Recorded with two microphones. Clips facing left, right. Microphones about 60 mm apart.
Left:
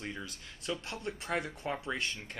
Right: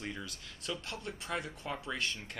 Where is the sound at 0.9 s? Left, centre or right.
Left.